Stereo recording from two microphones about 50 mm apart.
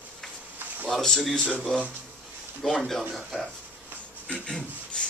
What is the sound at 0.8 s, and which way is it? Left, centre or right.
Speech, centre.